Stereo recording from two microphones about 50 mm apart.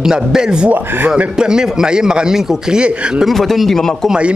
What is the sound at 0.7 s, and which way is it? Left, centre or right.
Speech, right.